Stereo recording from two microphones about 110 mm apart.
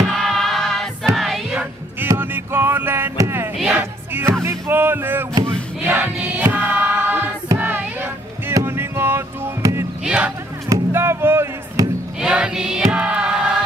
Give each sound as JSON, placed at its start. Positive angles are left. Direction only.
{"t": 0.1, "sound": "music", "side_deg": 0}
{"t": 1.6, "sound": "music", "side_deg": -20}
{"t": 3.5, "sound": "music", "side_deg": -10}
{"t": 4.1, "sound": "music", "side_deg": -25}
{"t": 5.9, "sound": "choir", "side_deg": -15}
{"t": 7.5, "sound": "music", "side_deg": -20}
{"t": 10.0, "sound": "a sound", "side_deg": -10}
{"t": 10.7, "sound": "music", "side_deg": -20}
{"t": 12.2, "sound": "choir", "side_deg": -5}